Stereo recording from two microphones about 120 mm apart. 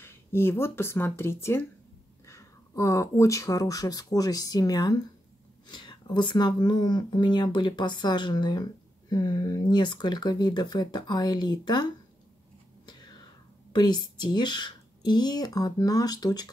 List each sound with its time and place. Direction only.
0.0 s speech: 20° left (ahead or behind); by 11.9 s 35° left (ahead or behind)
12.8 s whispering: 35° left (ahead or behind)
13.7 s speech: 40° left (ahead or behind)